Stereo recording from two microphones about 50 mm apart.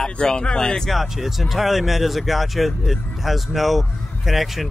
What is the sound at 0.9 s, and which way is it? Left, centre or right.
Speech, centre.